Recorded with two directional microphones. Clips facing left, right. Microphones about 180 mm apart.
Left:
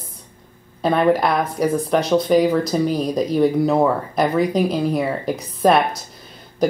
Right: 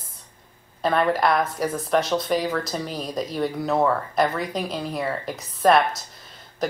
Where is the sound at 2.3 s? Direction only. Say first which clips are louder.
Left 10 dB; 15° left (ahead or behind).